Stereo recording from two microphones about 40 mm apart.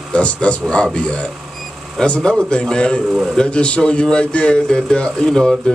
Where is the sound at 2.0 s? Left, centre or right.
Left.